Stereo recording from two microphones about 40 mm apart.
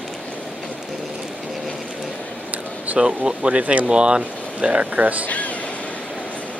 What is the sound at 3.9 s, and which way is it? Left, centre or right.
Speech, right.